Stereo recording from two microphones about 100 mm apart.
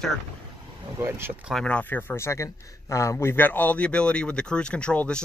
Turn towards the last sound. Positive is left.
turn(degrees=10)  # may be behind; listen again after turning